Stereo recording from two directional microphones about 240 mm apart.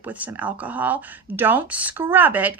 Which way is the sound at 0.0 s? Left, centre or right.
Centre.